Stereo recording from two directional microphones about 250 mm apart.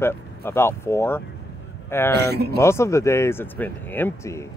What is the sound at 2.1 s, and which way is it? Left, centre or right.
Speech, right.